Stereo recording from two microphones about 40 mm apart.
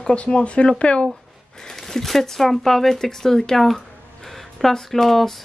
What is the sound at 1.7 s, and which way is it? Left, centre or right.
Speech, centre.